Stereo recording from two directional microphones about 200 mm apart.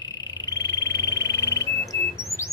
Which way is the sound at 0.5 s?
20° left (ahead or behind).